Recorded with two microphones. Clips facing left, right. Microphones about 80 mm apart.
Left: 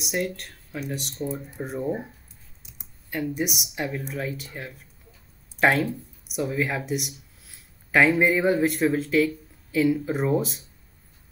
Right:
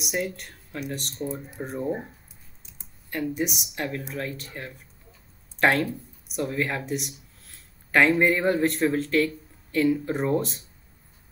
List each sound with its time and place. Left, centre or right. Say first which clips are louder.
0.0 s speech: left 1 dB; centre
3.1 s speech: even; centre